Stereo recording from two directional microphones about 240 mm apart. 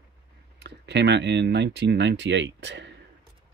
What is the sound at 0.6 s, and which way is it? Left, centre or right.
Speech, right.